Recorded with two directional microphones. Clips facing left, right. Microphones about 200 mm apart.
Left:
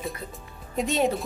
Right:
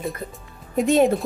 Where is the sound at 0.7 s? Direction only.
50° right (ahead or behind).